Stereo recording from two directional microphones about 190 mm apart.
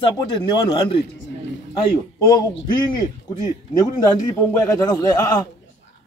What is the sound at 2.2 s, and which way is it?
Speech, 25° left (ahead or behind).